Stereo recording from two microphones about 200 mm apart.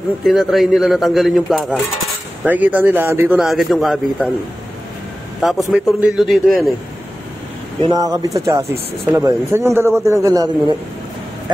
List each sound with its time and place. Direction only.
0.2 s a man's voice: centre (ahead or behind)
5.7 s a man's voice: 5° right (ahead or behind)
7.8 s a man's voice: 20° right (ahead or behind)